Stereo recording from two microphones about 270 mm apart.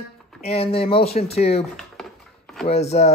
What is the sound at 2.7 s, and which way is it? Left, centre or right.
Speech, left.